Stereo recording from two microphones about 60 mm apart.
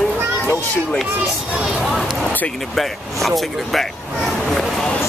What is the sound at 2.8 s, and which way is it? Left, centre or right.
Speech, centre.